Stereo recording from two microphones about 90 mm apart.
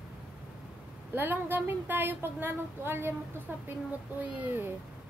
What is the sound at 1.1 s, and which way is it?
A woman's voice, 25° right (ahead or behind).